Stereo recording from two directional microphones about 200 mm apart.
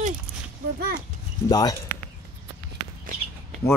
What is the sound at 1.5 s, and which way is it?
Speech, 20° left (ahead or behind).